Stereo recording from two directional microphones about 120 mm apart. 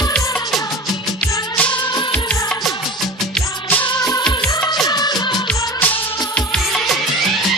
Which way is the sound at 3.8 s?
35° left (ahead or behind).